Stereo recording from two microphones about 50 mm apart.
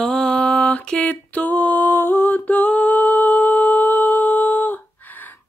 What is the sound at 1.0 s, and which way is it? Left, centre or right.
Music, left.